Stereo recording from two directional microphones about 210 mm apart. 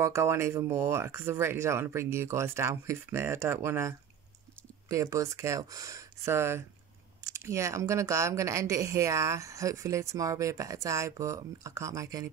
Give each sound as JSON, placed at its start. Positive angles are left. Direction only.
{"t": 0.0, "sound": "speech", "side_deg": -15}